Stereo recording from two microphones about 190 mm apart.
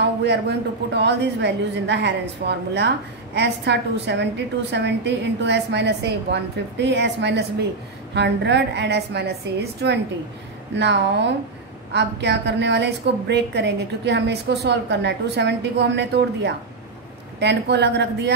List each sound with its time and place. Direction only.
0.0 s a woman's voice: 60° right (ahead or behind)